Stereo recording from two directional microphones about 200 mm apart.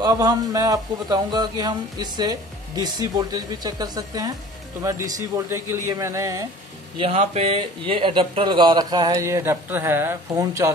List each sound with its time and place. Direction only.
0.0 s a man's voice: 20° right (ahead or behind)
7.0 s speech: 30° right (ahead or behind); by 10.7 s 15° right (ahead or behind)